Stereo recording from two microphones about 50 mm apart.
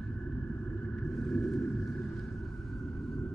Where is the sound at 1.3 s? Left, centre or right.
Centre.